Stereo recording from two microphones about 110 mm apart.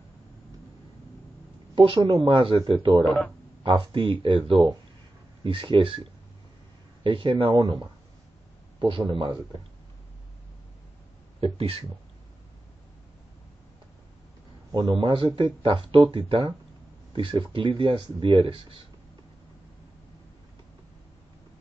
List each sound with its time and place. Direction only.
1.8 s speech: 45° right (ahead or behind)
11.4 s speech: 60° right (ahead or behind)
14.8 s speech: 50° right (ahead or behind)